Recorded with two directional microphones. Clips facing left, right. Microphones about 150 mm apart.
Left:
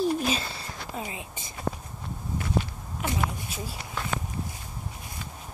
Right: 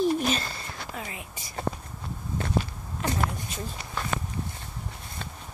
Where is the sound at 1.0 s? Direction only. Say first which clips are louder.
Left 2 dB; 25° left (ahead or behind).